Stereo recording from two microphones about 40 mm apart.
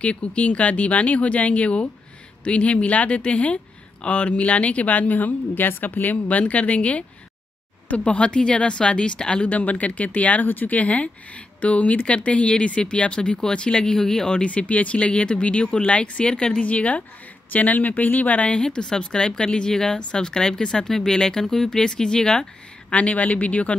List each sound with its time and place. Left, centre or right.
0.0 s speech: left
6.2 s speech: left
9.5 s speech: left
10.4 s speech: left; by 14.4 s centre
14.4 s speech: left
16.6 s speech: left
18.5 s speech: left
22.8 s speech: left